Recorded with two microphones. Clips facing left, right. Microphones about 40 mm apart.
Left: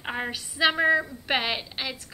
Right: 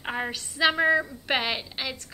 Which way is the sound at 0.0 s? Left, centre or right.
Centre.